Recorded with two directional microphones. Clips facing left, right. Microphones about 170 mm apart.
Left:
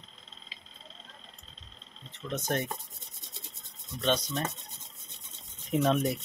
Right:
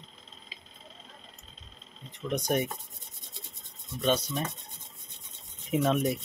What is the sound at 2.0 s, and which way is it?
Speech, 15° right (ahead or behind).